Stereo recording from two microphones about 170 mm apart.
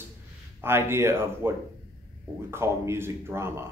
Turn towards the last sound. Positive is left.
turn(degrees=-15)  # may be behind; listen again after turning